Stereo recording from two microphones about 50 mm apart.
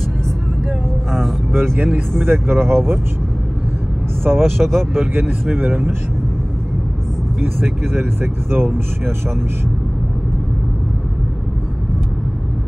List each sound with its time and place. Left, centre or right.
1.5 s vehicle: right
2.2 s speech: right
4.4 s speech: centre
7.8 s speech: right